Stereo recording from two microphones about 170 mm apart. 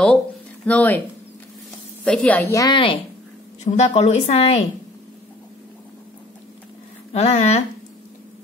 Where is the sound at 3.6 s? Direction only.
40° left (ahead or behind).